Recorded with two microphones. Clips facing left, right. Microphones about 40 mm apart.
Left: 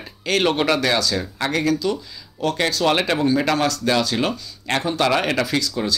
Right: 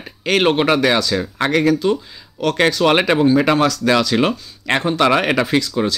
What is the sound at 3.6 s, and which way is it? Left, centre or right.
Speech, right.